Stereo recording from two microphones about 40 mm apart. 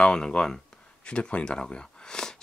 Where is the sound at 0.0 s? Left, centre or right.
Left.